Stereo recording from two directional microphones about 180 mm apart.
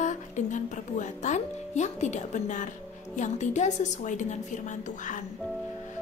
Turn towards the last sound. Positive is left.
turn(degrees=45)  # may be behind; listen again after turning